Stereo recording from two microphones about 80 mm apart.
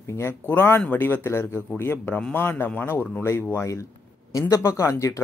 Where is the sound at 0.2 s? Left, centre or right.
Left.